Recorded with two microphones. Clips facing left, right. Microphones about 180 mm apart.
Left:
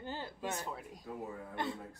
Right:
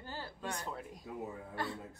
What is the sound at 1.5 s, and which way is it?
Speech, 20° left (ahead or behind).